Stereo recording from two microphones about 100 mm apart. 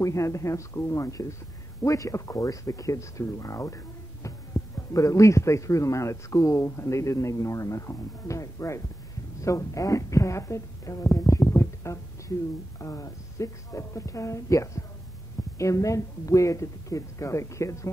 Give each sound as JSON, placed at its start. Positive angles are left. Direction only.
{"t": 0.0, "sound": "a woman's voice", "side_deg": 30}